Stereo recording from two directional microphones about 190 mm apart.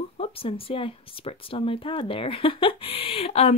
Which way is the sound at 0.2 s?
30° left (ahead or behind).